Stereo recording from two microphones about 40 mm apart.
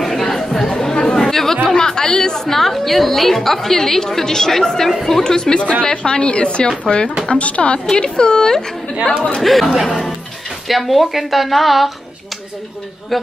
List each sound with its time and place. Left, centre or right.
0.0 s chatter: centre
1.7 s a woman's voice: centre
5.6 s a woman's voice: left
7.9 s a woman's voice: left
9.4 s a woman's voice: centre
13.1 s a woman's voice: centre